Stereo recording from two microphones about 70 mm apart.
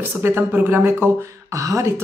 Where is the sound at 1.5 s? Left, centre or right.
Right.